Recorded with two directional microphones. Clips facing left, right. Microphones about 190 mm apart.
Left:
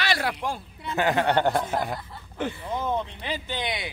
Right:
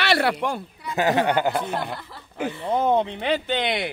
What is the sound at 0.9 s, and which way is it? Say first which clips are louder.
Speech: right 2 dB; 20° right (ahead or behind).